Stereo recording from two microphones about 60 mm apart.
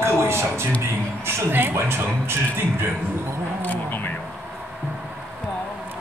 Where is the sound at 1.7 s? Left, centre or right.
Right.